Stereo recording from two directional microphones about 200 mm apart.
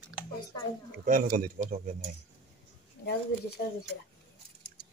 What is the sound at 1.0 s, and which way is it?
Speech, 40° right (ahead or behind).